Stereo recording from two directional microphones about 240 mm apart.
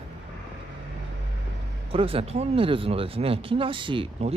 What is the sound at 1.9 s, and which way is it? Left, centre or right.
Speech, right.